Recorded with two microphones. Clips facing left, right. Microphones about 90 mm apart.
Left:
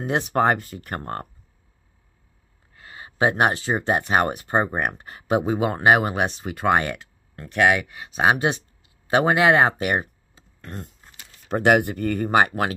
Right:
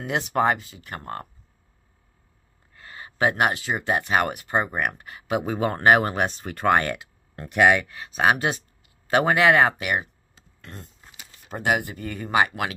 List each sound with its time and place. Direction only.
0.0 s speech: 40° left (ahead or behind)
2.7 s speech: 15° left (ahead or behind); by 5.4 s 35° left (ahead or behind)
5.4 s speech: 15° left (ahead or behind)
7.5 s speech: centre (ahead or behind)
7.8 s speech: 20° left (ahead or behind)
9.8 s speech: 35° left (ahead or behind)
11.4 s speech: 65° left (ahead or behind)
12.3 s speech: 40° left (ahead or behind)